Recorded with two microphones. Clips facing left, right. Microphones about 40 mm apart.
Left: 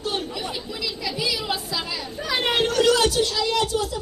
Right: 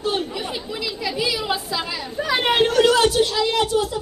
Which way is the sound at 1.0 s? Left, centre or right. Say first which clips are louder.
Right 3 dB; centre.